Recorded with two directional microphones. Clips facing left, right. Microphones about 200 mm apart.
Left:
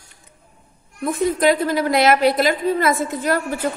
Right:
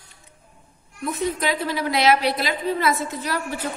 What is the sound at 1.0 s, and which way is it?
A woman's voice, 50° left (ahead or behind).